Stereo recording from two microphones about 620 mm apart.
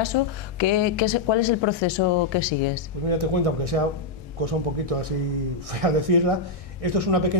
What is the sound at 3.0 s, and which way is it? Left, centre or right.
Speech, right.